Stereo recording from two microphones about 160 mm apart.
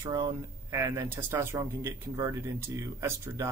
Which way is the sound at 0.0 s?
25° right (ahead or behind).